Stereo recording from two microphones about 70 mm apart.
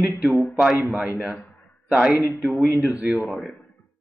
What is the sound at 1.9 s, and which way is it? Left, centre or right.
Speech, centre.